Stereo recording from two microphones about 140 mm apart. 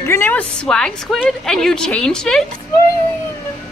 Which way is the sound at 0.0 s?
15° left (ahead or behind).